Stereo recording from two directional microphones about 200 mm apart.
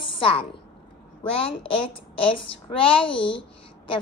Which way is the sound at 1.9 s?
25° left (ahead or behind).